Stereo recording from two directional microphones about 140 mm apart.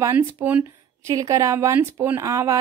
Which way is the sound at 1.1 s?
25° right (ahead or behind).